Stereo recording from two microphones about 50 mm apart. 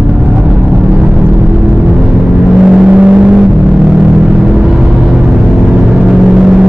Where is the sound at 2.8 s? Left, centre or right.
Right.